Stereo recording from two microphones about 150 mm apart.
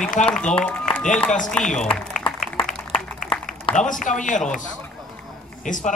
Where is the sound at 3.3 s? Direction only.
35° left (ahead or behind).